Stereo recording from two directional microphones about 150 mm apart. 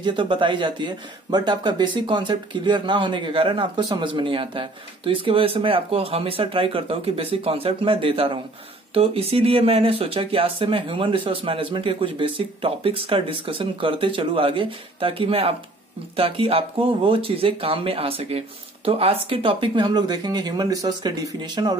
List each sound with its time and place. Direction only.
0.0 s speech: 35° right (ahead or behind)